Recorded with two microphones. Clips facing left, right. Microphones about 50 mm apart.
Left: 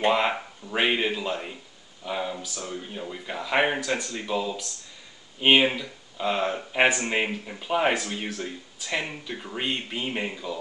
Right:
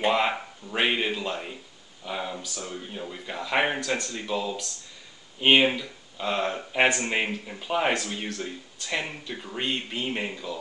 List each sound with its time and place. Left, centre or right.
0.0 s speech: centre